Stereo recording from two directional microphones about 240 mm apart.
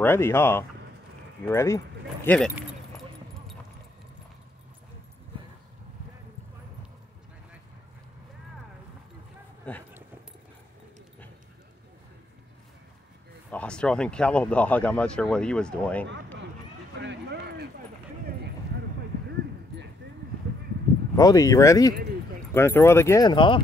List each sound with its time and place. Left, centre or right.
0.0 s speech: centre
2.5 s keys jangling: centre
9.7 s speech: centre
13.5 s speech: centre
17.0 s a sound: right
21.2 s speech: centre